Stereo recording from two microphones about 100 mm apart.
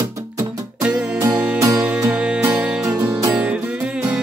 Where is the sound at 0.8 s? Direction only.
15° right (ahead or behind).